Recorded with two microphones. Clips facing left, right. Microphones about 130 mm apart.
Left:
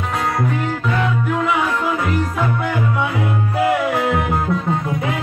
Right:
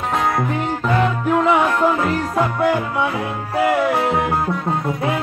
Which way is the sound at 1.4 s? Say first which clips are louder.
Right 5 dB; 40° right (ahead or behind).